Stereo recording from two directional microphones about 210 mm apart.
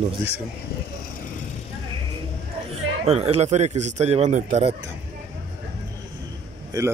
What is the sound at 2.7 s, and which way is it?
Speech, 30° right (ahead or behind).